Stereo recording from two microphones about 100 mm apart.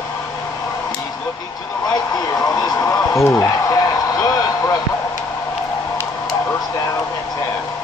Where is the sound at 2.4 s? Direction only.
40° left (ahead or behind).